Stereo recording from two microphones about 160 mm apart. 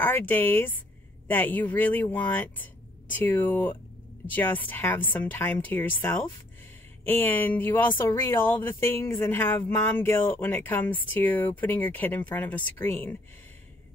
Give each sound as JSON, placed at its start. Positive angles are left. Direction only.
{"t": 0.0, "sound": "speech", "side_deg": 10}